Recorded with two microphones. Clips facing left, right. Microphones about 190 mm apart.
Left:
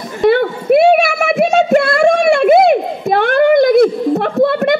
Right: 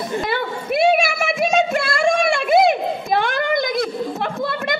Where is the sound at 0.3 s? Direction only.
55° left (ahead or behind).